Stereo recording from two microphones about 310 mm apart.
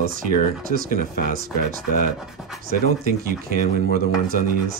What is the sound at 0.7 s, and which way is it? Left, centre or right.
Speech, right.